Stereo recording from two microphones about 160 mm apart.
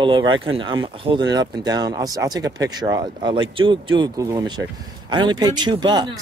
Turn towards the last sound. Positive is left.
turn(degrees=-25)  # may be behind; listen again after turning